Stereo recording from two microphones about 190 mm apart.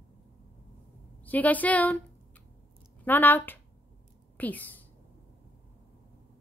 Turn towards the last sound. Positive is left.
turn(degrees=10)  # may be behind; listen again after turning